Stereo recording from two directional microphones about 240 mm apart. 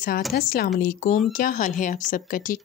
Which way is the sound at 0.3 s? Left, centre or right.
Left.